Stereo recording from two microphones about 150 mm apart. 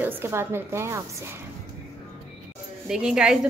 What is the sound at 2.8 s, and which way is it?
Speech, 5° right (ahead or behind).